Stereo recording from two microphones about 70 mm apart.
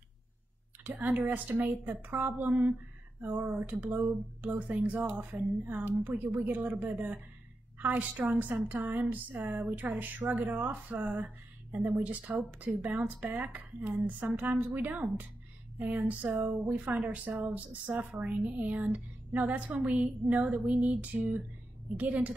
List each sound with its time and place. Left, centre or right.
1.1 s speech: right
3.8 s speech: right
4.4 s speech: right